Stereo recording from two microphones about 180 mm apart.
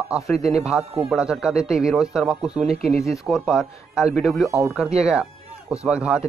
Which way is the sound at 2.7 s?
35° right (ahead or behind).